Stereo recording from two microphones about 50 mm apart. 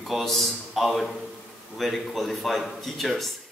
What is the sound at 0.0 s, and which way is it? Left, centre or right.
A man's voice, centre.